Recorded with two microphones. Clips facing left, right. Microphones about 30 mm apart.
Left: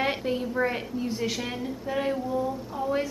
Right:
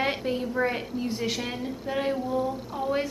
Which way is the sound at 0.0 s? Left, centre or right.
Centre.